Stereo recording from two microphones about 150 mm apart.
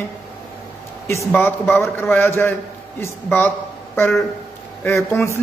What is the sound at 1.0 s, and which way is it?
A woman's voice, 20° left (ahead or behind).